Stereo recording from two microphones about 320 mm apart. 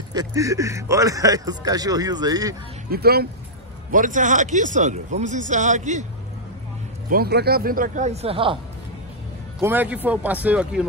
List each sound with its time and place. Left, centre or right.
0.1 s a man's voice: centre
2.9 s speech: right
7.1 s speech: right
9.6 s a man's voice: centre